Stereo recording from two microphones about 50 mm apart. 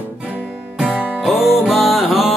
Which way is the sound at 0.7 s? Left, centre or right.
Right.